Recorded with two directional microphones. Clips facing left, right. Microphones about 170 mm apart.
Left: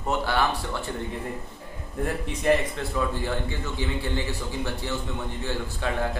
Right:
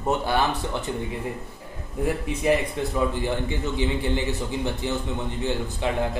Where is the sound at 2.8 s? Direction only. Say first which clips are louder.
Right 3 dB; 20° right (ahead or behind).